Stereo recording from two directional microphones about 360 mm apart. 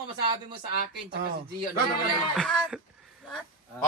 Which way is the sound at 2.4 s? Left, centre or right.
Centre.